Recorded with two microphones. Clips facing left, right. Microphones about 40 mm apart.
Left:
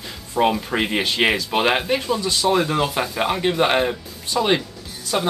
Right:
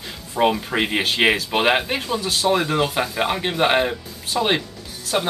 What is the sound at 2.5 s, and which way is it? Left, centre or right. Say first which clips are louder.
Speech: even; centre.